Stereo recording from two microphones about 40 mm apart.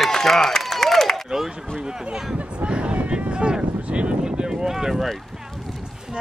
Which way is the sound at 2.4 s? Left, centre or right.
Right.